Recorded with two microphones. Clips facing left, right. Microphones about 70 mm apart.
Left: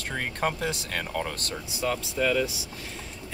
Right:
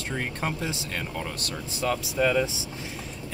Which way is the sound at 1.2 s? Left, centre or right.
Left.